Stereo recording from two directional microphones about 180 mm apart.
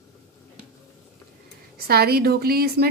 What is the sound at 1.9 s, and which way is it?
A woman's voice, 60° right (ahead or behind).